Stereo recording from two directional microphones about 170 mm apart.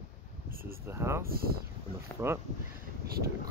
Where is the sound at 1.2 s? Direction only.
60° right (ahead or behind).